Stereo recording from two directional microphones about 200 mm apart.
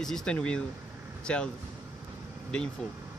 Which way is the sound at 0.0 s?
5° left (ahead or behind).